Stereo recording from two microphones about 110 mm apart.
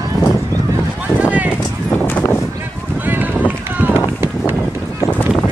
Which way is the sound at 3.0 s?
15° right (ahead or behind).